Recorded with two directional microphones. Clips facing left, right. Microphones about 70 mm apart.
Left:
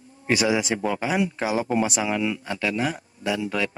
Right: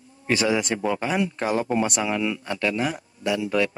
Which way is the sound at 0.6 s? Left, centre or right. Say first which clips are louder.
Even; centre.